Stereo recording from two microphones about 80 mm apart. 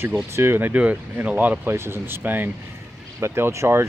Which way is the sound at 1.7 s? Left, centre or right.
Right.